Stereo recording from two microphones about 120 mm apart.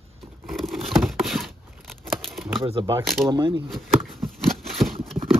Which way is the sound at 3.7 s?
Centre (ahead or behind).